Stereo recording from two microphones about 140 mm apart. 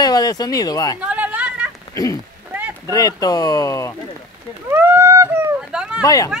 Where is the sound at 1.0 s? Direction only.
10° right (ahead or behind).